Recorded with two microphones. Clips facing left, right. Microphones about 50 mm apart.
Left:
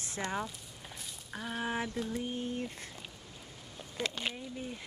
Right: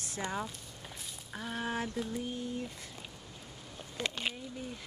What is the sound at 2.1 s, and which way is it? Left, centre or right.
Speech, left.